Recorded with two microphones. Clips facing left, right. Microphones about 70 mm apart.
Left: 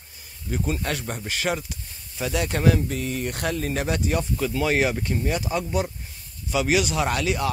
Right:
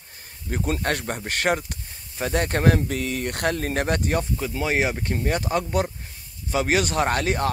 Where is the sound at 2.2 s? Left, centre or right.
Right.